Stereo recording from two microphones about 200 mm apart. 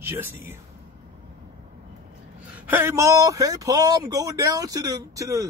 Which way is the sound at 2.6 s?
10° right (ahead or behind).